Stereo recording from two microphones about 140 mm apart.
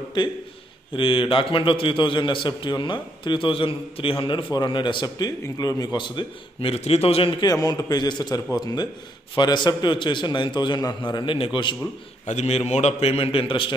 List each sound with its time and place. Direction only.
0.9 s a man's voice: 40° left (ahead or behind)
7.4 s a man's voice: 25° left (ahead or behind)
12.3 s a man's voice: 50° left (ahead or behind)